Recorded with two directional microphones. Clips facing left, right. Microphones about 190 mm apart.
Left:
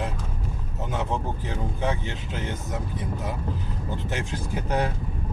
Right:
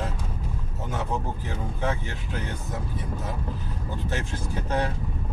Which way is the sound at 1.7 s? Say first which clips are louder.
Even; 20° left (ahead or behind).